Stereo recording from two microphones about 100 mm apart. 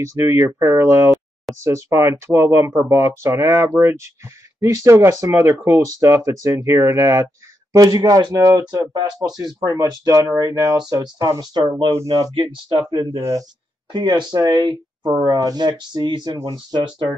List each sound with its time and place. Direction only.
0.3 s speech: 30° right (ahead or behind)
7.7 s speech: 40° right (ahead or behind)
11.9 s speech: 35° right (ahead or behind)
13.9 s speech: 45° right (ahead or behind)